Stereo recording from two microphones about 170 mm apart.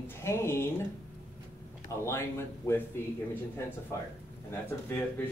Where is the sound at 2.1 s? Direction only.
15° left (ahead or behind).